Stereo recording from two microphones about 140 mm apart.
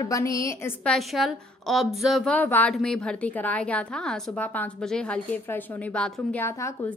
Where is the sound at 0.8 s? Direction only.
Centre (ahead or behind).